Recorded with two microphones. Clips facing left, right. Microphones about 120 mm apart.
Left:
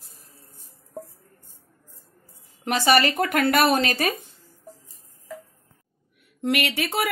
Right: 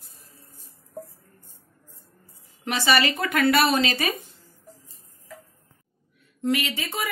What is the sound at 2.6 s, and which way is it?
Speech, 45° left (ahead or behind).